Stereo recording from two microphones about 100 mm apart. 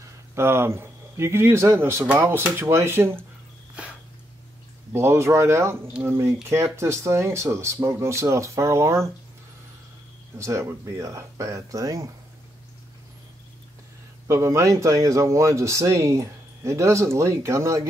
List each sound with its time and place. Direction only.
0.0 s a man's voice: 25° right (ahead or behind)
4.9 s speech: 25° right (ahead or behind)
10.3 s speech: 30° right (ahead or behind)
14.2 s speech: 30° right (ahead or behind)